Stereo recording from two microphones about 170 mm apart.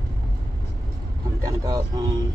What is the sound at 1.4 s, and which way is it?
Speech, 20° right (ahead or behind).